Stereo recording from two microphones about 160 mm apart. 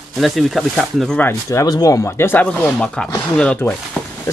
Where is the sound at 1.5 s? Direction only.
20° left (ahead or behind).